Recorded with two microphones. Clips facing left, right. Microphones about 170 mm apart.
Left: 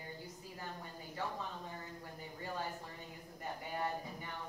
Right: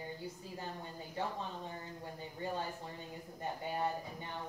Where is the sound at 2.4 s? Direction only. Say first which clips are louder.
Right 3 dB; 25° right (ahead or behind).